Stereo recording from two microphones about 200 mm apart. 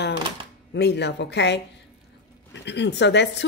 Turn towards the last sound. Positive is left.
turn(degrees=60)  # may be behind; listen again after turning